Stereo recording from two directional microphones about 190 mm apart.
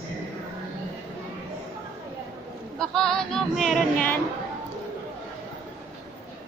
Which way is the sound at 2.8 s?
5° left (ahead or behind).